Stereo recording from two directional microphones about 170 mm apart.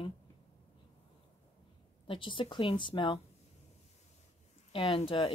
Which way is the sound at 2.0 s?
30° left (ahead or behind).